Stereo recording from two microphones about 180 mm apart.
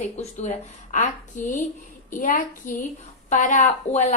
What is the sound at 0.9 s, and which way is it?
Speech, 45° left (ahead or behind).